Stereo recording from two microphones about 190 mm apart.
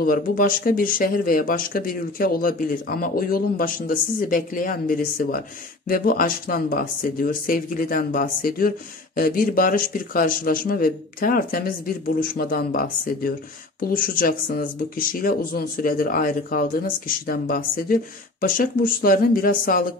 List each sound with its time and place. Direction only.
0.0 s speech: 50° left (ahead or behind)